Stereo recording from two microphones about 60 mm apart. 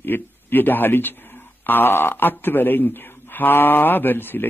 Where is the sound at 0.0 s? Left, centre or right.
Left.